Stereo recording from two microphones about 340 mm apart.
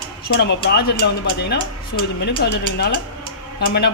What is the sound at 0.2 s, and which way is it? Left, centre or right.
A man's voice, left.